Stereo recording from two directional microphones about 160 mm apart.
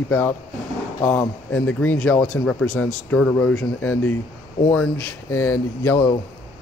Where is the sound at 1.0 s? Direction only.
10° left (ahead or behind).